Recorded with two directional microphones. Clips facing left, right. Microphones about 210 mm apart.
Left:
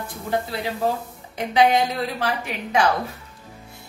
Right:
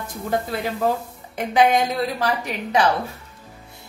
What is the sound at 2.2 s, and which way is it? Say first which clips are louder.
Speech: right 2 dB; 40° right (ahead or behind).